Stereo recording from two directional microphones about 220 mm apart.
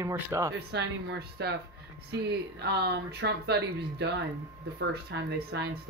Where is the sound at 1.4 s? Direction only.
50° right (ahead or behind).